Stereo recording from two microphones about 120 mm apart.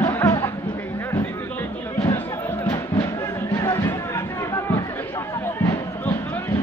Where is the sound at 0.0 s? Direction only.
20° left (ahead or behind).